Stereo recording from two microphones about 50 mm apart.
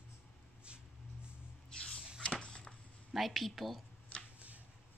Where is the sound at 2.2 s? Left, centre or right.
Centre.